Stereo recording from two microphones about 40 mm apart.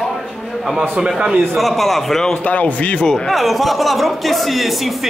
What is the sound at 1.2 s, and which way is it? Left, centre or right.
A man's voice, centre.